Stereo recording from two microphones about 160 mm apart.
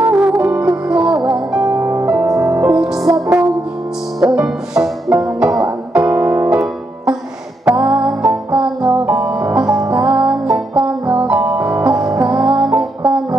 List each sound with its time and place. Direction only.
0.0 s music: 5° right (ahead or behind)
1.6 s music: 20° right (ahead or behind)
2.7 s music: 5° right (ahead or behind)
4.2 s music: 15° right (ahead or behind)
4.7 s music: 5° right (ahead or behind)
9.8 s music: 20° right (ahead or behind)
10.0 s music: 10° right (ahead or behind)